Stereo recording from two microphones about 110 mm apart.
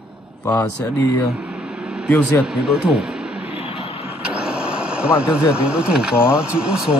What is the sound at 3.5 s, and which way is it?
Vehicle, 65° left (ahead or behind).